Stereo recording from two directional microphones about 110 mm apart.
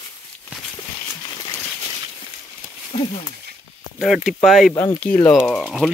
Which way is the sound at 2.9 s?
80° left.